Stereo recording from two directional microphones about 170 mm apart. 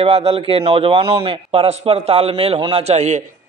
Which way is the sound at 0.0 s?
35° right (ahead or behind).